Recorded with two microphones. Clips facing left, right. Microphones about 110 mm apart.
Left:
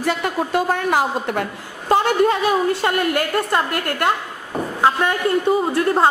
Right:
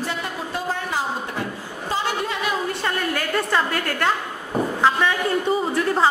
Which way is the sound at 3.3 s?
5° left (ahead or behind).